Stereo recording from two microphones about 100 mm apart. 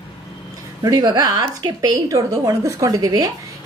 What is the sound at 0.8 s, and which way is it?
A woman's voice, 40° right (ahead or behind).